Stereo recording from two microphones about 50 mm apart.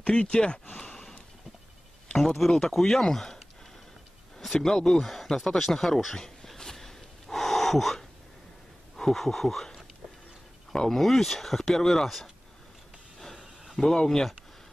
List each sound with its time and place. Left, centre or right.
0.0 s speech: centre
0.7 s a sound: centre
2.1 s speech: centre
4.6 s speech: centre
6.1 s gasp: centre
8.9 s speech: centre
13.7 s speech: centre